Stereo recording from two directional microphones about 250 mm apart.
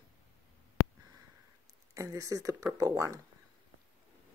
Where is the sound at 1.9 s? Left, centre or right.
Centre.